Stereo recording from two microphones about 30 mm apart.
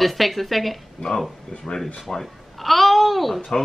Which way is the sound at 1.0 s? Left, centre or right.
Left.